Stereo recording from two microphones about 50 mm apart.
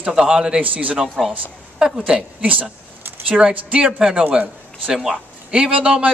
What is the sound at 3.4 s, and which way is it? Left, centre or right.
A man's voice, right.